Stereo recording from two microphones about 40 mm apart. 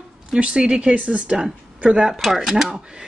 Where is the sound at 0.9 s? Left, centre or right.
Right.